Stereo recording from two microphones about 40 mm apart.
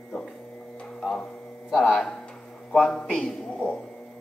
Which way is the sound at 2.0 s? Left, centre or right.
Centre.